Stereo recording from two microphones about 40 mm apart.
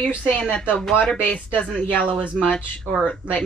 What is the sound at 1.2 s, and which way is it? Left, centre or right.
Speech, left.